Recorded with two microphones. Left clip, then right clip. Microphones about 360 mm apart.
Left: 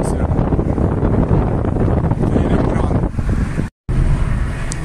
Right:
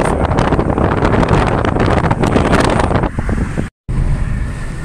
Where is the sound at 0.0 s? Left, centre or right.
Right.